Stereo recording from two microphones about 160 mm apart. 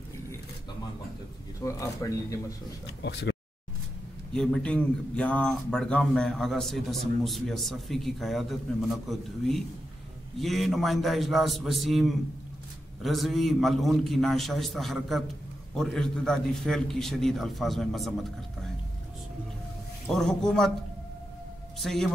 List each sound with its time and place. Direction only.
1.6 s speech: 20° left (ahead or behind)
3.0 s speech: 90° left
4.3 s speech: 5° left (ahead or behind)
20.1 s speech: 5° left (ahead or behind)
21.7 s speech: centre (ahead or behind)